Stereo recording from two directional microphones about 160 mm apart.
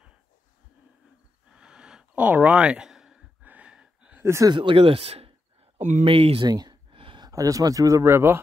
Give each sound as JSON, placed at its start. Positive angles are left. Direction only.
{"t": 1.5, "sound": "a sound", "side_deg": -5}
{"t": 4.2, "sound": "speech", "side_deg": -20}
{"t": 4.6, "sound": "speech", "side_deg": -30}
{"t": 5.8, "sound": "speech", "side_deg": -50}